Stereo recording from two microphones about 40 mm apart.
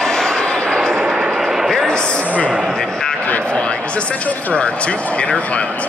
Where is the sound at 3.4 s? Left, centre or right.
Left.